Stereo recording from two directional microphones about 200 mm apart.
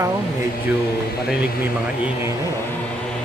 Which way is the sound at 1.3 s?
5° right (ahead or behind).